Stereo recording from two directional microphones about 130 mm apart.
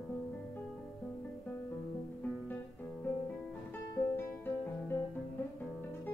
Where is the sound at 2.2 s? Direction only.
15° left (ahead or behind).